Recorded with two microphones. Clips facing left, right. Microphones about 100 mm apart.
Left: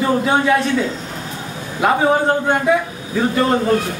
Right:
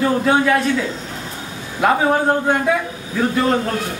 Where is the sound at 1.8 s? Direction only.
Centre (ahead or behind).